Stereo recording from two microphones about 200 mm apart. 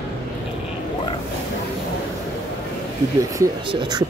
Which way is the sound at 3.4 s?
20° right (ahead or behind).